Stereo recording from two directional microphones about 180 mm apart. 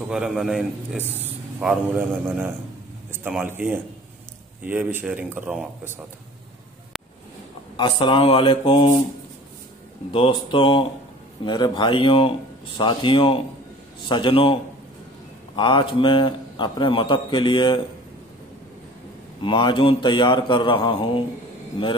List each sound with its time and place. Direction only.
0.1 s a man's voice: centre (ahead or behind)
7.7 s a man's voice: 25° left (ahead or behind)
10.1 s a man's voice: 30° left (ahead or behind)
19.4 s a man's voice: 25° left (ahead or behind)